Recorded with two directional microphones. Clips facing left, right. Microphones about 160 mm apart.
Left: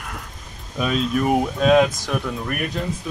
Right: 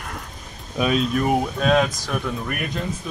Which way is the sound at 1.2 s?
Centre (ahead or behind).